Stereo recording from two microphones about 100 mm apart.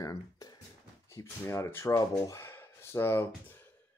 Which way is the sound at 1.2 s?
30° left (ahead or behind).